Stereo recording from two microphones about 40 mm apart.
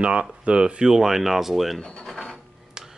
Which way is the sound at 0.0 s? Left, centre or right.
Right.